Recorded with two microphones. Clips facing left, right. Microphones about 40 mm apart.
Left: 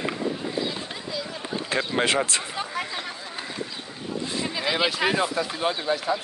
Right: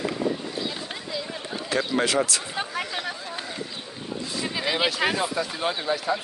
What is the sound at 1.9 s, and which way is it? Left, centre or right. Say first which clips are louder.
Speech: even; left.